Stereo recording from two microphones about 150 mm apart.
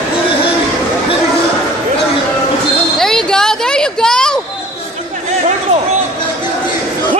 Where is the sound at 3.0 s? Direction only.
5° left (ahead or behind).